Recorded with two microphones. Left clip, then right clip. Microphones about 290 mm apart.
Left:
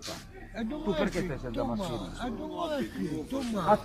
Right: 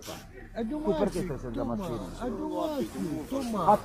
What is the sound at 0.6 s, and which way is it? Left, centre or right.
Speech, left.